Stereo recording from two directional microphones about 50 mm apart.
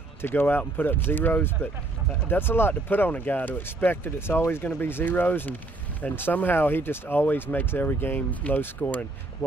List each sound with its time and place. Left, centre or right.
0.2 s speech: left